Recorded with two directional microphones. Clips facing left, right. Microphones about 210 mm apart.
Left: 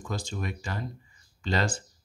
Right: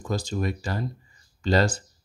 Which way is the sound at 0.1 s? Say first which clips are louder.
Right 7 dB; 35° right (ahead or behind).